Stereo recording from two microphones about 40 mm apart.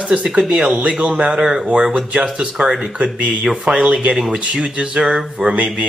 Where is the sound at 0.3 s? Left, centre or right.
Right.